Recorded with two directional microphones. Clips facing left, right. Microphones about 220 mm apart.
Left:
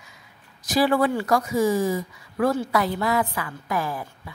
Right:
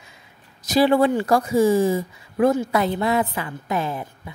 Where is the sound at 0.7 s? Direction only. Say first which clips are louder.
Right 4 dB; 25° right (ahead or behind).